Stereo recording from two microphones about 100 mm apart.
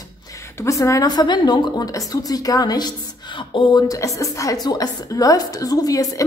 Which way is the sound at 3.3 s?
55° left (ahead or behind).